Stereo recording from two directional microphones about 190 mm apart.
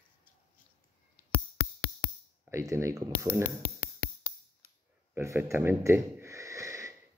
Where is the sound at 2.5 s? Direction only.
15° right (ahead or behind).